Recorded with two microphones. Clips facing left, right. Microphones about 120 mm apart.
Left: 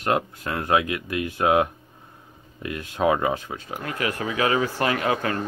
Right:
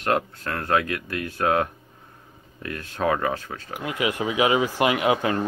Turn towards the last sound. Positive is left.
turn(degrees=-15)  # may be behind; listen again after turning